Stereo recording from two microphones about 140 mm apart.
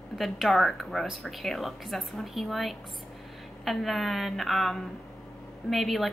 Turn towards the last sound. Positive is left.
turn(degrees=0)  # may be behind; listen again after turning